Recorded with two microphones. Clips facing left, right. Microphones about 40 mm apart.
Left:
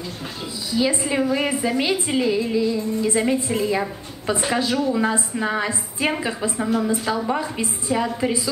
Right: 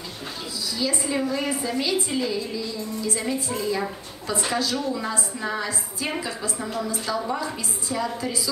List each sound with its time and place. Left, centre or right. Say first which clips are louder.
0.7 s a woman's voice: left 6 dB; left